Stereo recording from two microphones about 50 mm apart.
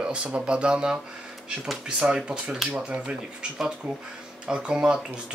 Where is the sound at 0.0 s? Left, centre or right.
Right.